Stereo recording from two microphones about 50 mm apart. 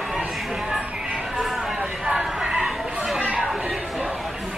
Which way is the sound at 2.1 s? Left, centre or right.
Centre.